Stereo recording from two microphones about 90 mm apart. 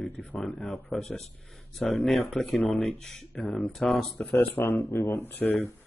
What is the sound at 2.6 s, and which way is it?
Speech, 15° left (ahead or behind).